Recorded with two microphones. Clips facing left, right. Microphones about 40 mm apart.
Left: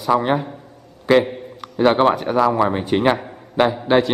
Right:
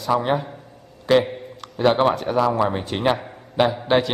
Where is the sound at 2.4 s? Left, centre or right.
Left.